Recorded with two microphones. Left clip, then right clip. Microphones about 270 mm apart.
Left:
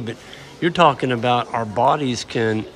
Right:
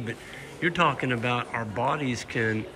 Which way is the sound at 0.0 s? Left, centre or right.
Centre.